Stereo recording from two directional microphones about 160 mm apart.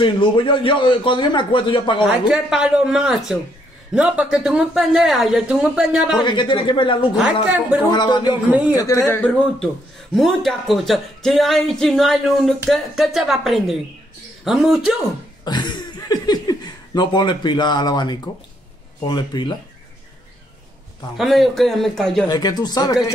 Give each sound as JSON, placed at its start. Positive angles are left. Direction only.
{"t": 0.0, "sound": "a man's voice", "side_deg": 30}
{"t": 2.2, "sound": "speech", "side_deg": -5}
{"t": 6.1, "sound": "a man's voice", "side_deg": 30}
{"t": 9.1, "sound": "speech", "side_deg": 5}
{"t": 15.4, "sound": "a sound", "side_deg": 30}
{"t": 19.0, "sound": "speech", "side_deg": 30}
{"t": 21.2, "sound": "speech", "side_deg": 0}
{"t": 22.3, "sound": "speech", "side_deg": 25}